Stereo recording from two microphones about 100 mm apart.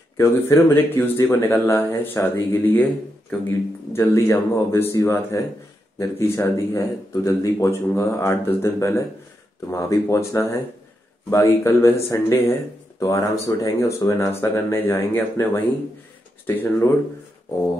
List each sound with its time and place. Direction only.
0.2 s speech: 25° left (ahead or behind)
2.5 s a man's voice: 20° left (ahead or behind)